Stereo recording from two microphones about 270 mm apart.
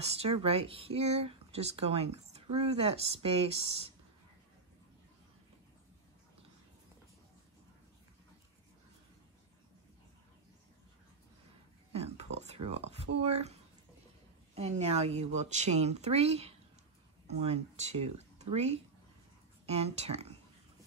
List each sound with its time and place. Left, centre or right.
0.0 s speech: right
11.9 s a sound: right
12.6 s speech: right